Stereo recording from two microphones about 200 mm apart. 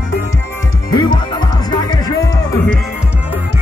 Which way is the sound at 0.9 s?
20° left (ahead or behind).